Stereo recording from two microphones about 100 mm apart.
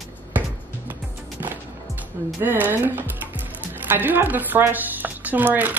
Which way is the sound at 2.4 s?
20° right (ahead or behind).